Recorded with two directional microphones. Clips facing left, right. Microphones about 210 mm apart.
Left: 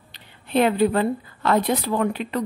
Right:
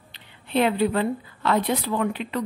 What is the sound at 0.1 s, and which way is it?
A woman's voice, 45° left (ahead or behind).